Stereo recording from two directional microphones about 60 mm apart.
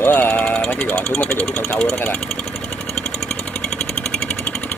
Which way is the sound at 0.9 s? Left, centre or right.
Centre.